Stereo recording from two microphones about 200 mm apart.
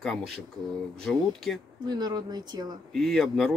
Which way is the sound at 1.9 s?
20° right (ahead or behind).